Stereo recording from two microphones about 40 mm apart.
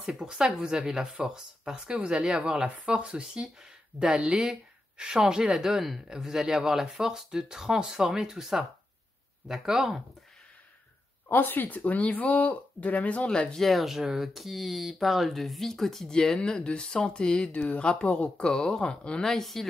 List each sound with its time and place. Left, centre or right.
0.2 s speech: centre
11.2 s speech: left
12.0 s speech: left
13.3 s speech: left
13.6 s speech: centre
13.8 s speech: centre
16.1 s speech: centre
17.5 s speech: left
18.6 s speech: centre
19.2 s speech: centre